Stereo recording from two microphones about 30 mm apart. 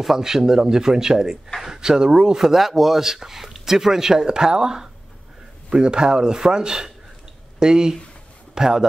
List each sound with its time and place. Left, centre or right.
0.0 s a man's voice: centre
2.3 s a man's voice: centre